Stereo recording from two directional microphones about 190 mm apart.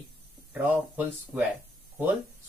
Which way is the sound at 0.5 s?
10° right (ahead or behind).